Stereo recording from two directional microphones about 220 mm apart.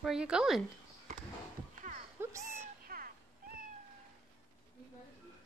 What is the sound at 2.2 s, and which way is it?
Music, 10° right (ahead or behind).